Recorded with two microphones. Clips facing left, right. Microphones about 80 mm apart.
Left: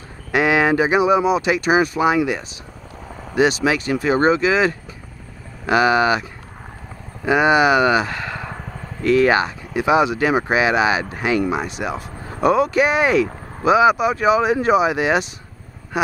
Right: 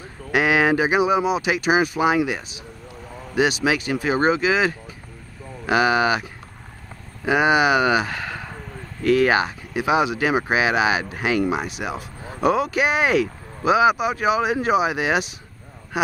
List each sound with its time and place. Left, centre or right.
0.3 s a sound: left
1.2 s speech: left
3.6 s speech: left
5.7 s speech: left
7.2 s speech: left